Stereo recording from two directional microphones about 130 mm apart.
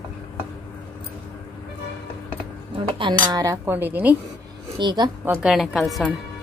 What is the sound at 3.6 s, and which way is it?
Speech, 15° right (ahead or behind).